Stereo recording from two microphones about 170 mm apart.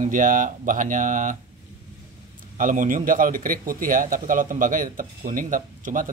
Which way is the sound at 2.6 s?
50° right (ahead or behind).